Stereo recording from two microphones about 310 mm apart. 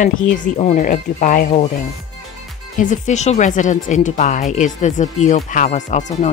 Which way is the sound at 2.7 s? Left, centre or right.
Left.